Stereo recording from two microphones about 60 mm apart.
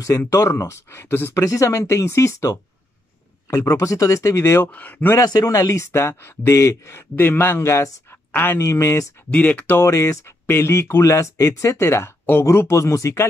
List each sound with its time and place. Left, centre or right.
0.3 s speech: left
1.4 s speech: left
4.7 s speech: left
5.2 s speech: left
7.2 s a man's voice: left
9.3 s speech: left
9.8 s speech: left
10.4 s speech: left